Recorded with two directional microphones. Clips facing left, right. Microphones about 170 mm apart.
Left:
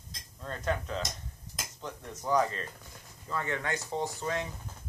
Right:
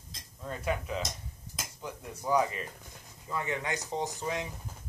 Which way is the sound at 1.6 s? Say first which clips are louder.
Even; 10° right (ahead or behind).